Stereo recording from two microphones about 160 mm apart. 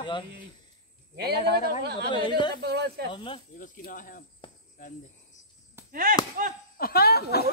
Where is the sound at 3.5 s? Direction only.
55° left (ahead or behind).